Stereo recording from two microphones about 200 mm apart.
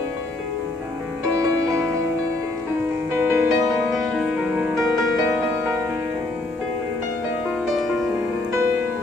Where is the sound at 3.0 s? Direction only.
15° right (ahead or behind).